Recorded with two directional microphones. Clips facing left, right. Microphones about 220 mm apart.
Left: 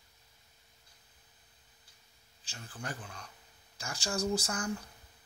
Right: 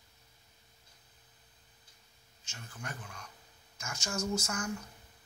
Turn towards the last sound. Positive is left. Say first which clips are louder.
# left 1 dB
turn(degrees=35)  # may be behind; listen again after turning